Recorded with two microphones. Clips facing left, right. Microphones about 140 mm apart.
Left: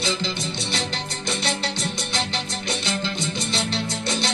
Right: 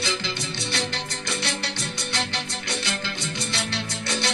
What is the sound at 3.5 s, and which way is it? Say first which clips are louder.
Music: left 4 dB; 20° left (ahead or behind).